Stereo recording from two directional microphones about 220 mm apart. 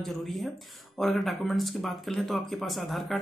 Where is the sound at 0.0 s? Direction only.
Centre (ahead or behind).